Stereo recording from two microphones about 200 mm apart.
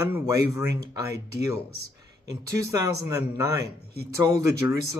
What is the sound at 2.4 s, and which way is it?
Speech, 15° right (ahead or behind).